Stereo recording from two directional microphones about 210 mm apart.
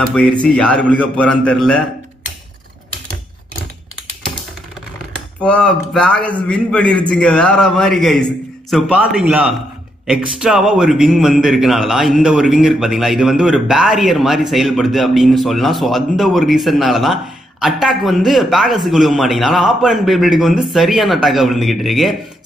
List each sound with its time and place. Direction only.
0.0 s a man's voice: 5° left (ahead or behind)
5.4 s a man's voice: 5° left (ahead or behind)